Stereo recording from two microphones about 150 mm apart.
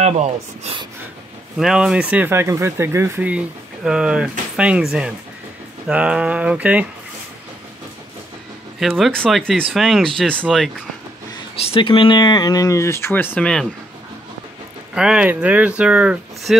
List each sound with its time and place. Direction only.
0.0 s speech: 45° right (ahead or behind)
1.6 s speech: 5° right (ahead or behind)
5.9 s speech: 5° right (ahead or behind)
8.7 s speech: centre (ahead or behind)
11.6 s speech: 35° left (ahead or behind); by 13.7 s 5° left (ahead or behind)
15.0 s speech: 5° right (ahead or behind)